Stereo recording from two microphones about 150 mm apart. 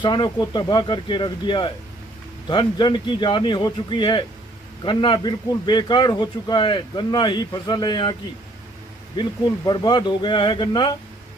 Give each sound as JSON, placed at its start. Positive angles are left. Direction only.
{"t": 0.0, "sound": "speech", "side_deg": 30}